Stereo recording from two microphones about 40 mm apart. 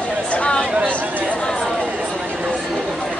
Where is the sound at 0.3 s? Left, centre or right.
Left.